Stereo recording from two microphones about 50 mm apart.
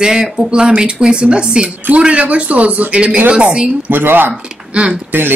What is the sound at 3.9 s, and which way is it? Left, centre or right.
Speech, right.